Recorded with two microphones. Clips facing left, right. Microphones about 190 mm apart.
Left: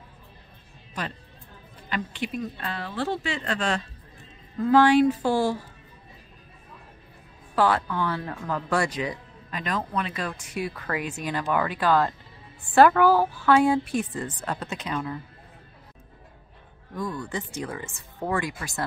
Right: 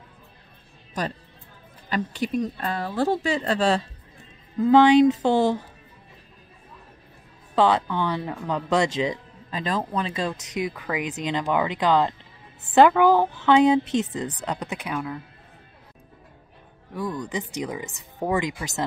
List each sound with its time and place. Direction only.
1.9 s speech: 40° right (ahead or behind)
4.6 s speech: 20° right (ahead or behind)
7.5 s speech: 20° right (ahead or behind)
16.9 s speech: 15° right (ahead or behind)